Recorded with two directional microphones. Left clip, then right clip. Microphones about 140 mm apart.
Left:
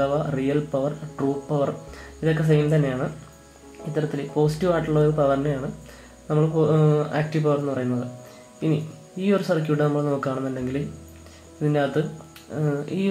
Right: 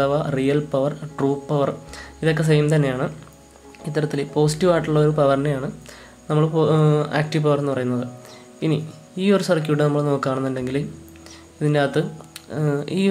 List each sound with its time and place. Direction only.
0.0 s speech: 30° right (ahead or behind)
9.2 s speech: 30° right (ahead or behind)